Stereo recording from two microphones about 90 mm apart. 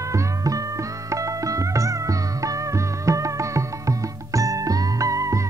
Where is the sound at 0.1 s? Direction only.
40° right (ahead or behind).